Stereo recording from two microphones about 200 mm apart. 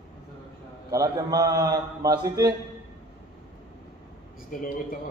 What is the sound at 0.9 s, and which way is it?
A man's voice, 15° right (ahead or behind).